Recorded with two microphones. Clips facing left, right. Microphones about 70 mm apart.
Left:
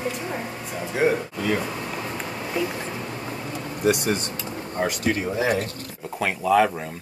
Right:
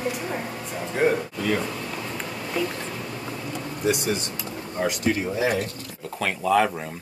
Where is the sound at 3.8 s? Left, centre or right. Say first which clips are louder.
Left 3 dB; left.